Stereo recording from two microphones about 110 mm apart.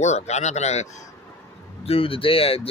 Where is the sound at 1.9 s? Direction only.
55° left (ahead or behind).